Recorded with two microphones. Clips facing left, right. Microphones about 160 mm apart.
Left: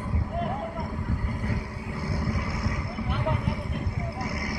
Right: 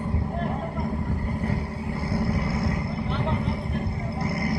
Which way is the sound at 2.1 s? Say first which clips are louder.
Right 5 dB; 30° right (ahead or behind).